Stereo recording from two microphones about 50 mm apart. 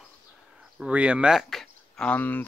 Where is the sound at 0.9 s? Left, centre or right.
Right.